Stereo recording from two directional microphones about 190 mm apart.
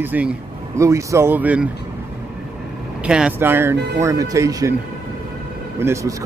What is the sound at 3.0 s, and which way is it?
Speech, 5° right (ahead or behind).